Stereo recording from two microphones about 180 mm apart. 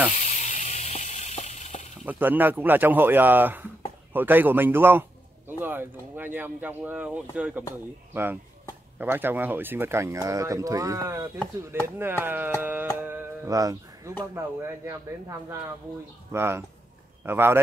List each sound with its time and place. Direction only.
0.4 s a sound: 45° left (ahead or behind)
2.0 s speech: 10° right (ahead or behind)
16.3 s speech: 15° right (ahead or behind)